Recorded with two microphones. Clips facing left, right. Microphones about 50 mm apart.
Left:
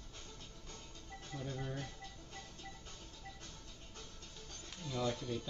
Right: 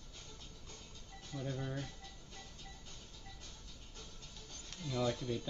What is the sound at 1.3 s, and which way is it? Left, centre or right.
Speech, centre.